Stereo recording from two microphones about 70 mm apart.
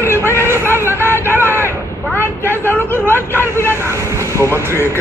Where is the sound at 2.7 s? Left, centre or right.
Left.